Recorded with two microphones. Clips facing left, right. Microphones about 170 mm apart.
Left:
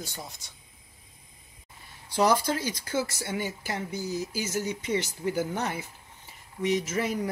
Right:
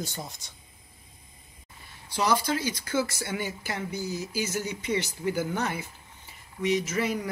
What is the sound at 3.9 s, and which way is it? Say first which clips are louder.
Speech: even; 40° left (ahead or behind).